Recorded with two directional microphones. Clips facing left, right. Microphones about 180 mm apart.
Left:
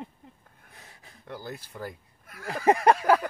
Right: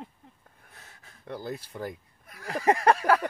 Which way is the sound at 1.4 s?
20° right (ahead or behind).